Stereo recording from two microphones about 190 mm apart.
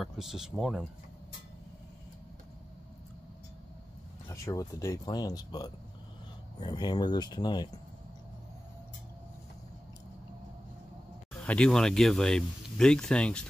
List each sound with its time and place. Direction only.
0.0 s speech: centre (ahead or behind)
4.3 s speech: 15° left (ahead or behind)
11.4 s speech: 5° left (ahead or behind)